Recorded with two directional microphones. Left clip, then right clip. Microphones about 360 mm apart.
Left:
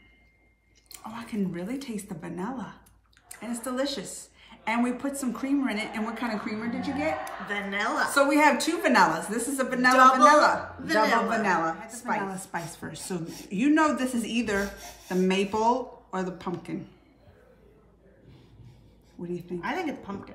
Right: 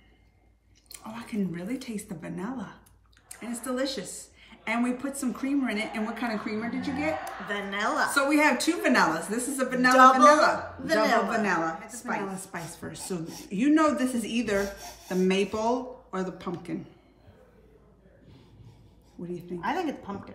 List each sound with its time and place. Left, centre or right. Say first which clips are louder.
0.9 s a woman's voice: even; centre
7.4 s a woman's voice: even; centre
8.1 s a woman's voice: left 4 dB; centre
10.8 s a woman's voice: even; centre
11.4 s a woman's voice: left 2 dB; centre
13.2 s a woman's voice: even; centre
13.5 s a woman's voice: even; centre
14.6 s speech: right 1 dB; centre
15.2 s a woman's voice: left 2 dB; centre
19.4 s a woman's voice: right 2 dB; centre